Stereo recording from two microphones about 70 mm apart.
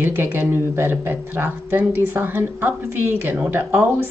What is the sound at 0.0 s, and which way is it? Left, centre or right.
Speech, right.